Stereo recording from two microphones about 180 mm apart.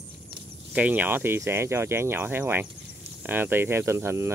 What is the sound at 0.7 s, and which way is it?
Speech, 10° right (ahead or behind).